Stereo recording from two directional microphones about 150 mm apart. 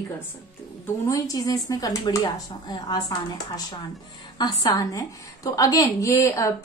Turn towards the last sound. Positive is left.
turn(degrees=20)  # may be behind; listen again after turning